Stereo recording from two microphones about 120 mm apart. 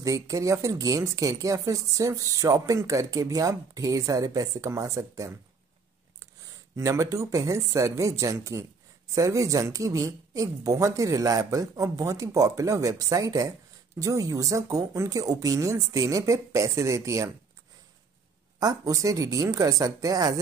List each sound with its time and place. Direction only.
0.0 s speech: 25° right (ahead or behind)
6.8 s speech: 25° right (ahead or behind)
18.6 s speech: 30° right (ahead or behind)